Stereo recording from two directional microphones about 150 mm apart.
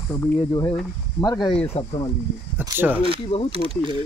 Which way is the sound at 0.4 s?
30° left (ahead or behind).